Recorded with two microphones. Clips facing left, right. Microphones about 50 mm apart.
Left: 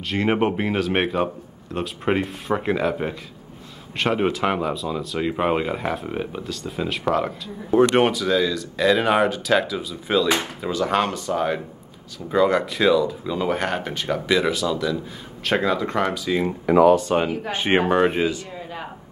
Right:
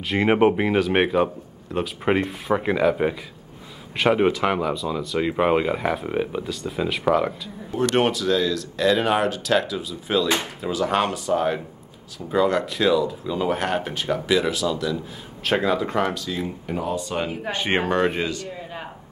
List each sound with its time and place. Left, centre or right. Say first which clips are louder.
0.1 s speech: right 3 dB; centre
4.0 s speech: right 2 dB; centre
17.1 s speech: left 4 dB; left; by 18.4 s centre